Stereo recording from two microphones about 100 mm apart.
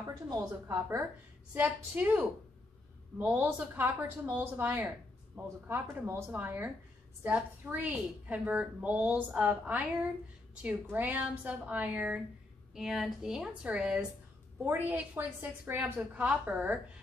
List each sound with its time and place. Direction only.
0.3 s speech: 30° right (ahead or behind)
1.5 s a woman's voice: 20° right (ahead or behind)
12.7 s a woman's voice: 5° right (ahead or behind)
14.6 s a woman's voice: 20° right (ahead or behind)